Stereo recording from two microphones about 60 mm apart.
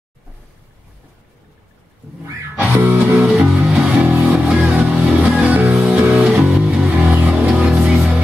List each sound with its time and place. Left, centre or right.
2.5 s music: right
3.2 s music: centre